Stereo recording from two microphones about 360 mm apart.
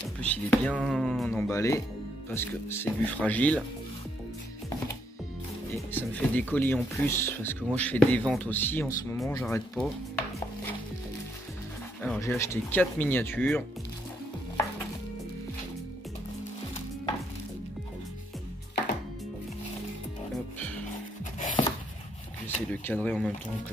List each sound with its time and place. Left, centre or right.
0.2 s speech: centre
5.9 s speech: centre
12.0 s speech: centre
20.5 s music: centre
21.4 s music: left
22.7 s speech: centre